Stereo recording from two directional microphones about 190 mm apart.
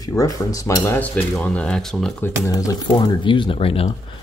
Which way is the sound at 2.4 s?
15° left (ahead or behind).